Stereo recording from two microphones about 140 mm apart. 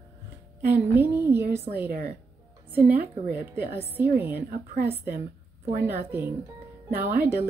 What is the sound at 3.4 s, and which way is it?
A woman's voice, 15° right (ahead or behind).